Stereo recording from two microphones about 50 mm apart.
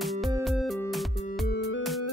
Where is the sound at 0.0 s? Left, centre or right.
Centre.